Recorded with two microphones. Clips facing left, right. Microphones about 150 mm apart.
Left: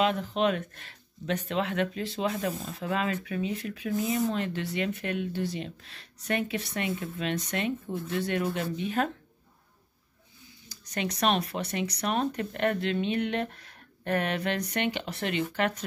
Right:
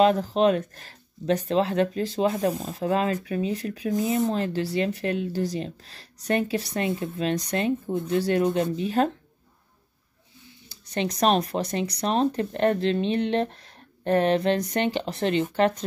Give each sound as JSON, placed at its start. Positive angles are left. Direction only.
{"t": 0.0, "sound": "speech", "side_deg": -35}
{"t": 8.5, "sound": "speech", "side_deg": -20}
{"t": 8.8, "sound": "speech", "side_deg": -35}
{"t": 10.7, "sound": "speech", "side_deg": -30}